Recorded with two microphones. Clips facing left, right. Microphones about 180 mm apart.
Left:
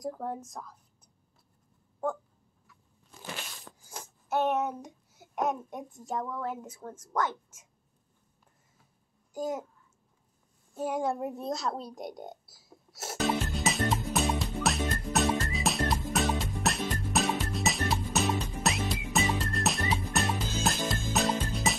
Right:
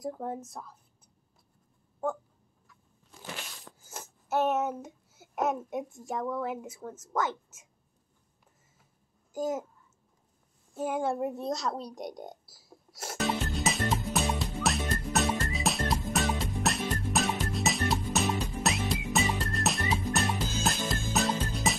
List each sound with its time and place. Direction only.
0.0 s speech: 5° right (ahead or behind)
3.9 s a child's voice: 5° right (ahead or behind)
9.3 s a child's voice: 5° right (ahead or behind)
10.8 s speech: 5° right (ahead or behind)
12.5 s music: centre (ahead or behind)